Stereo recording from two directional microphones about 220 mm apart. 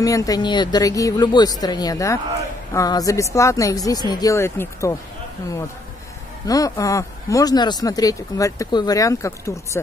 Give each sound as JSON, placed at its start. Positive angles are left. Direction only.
{"t": 0.0, "sound": "speech", "side_deg": 15}
{"t": 6.4, "sound": "speech", "side_deg": 15}